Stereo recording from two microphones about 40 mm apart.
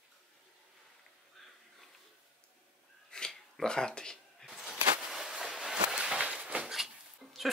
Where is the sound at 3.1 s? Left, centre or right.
Centre.